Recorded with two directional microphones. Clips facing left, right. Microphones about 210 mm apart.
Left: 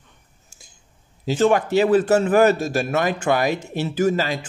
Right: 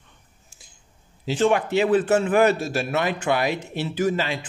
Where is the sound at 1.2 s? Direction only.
45° left (ahead or behind).